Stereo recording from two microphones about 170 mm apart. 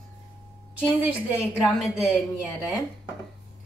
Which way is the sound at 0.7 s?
10° right (ahead or behind).